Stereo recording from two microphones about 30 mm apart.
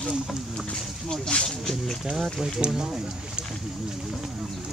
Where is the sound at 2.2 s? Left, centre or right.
Centre.